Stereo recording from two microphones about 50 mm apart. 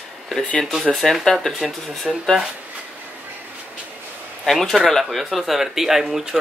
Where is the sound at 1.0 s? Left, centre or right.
Centre.